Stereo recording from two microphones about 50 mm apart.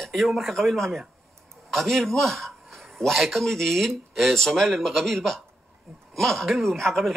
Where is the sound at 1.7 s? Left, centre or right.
Centre.